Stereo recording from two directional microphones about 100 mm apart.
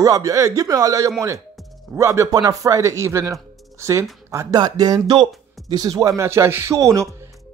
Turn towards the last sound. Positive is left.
turn(degrees=-30)  # may be behind; listen again after turning